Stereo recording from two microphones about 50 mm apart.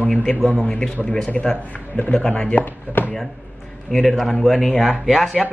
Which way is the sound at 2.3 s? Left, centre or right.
Left.